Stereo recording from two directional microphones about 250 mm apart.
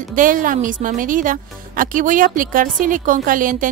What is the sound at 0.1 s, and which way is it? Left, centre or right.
Speech, right.